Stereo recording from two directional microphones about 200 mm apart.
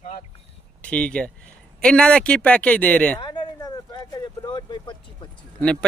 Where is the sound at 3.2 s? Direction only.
20° left (ahead or behind).